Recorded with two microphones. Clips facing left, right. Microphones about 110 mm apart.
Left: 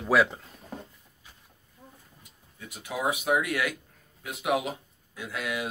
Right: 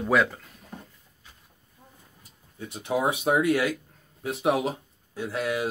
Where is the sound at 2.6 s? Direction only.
30° right (ahead or behind).